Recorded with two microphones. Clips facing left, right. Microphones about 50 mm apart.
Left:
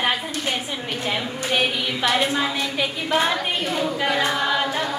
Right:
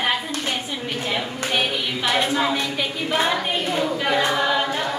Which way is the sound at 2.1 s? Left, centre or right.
Centre.